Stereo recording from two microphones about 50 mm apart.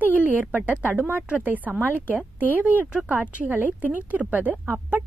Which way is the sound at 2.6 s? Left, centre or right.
Right.